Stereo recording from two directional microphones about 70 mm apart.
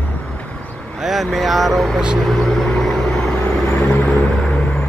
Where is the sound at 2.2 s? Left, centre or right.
Centre.